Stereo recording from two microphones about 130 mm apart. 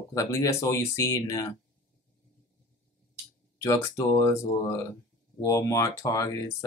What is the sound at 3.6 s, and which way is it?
Speech, 25° left (ahead or behind).